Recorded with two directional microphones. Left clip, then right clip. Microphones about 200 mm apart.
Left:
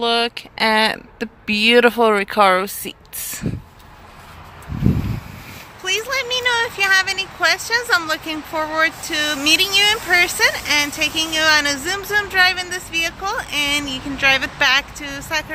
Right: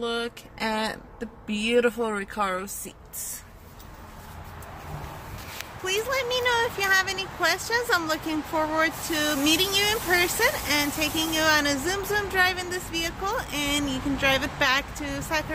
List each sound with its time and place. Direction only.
0.0 s speech: 30° left (ahead or behind)
5.9 s speech: 5° right (ahead or behind)